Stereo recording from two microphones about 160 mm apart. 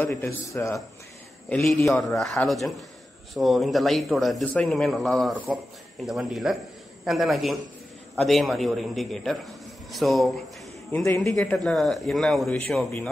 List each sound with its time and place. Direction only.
0.0 s a man's voice: 15° left (ahead or behind)
1.5 s a man's voice: centre (ahead or behind)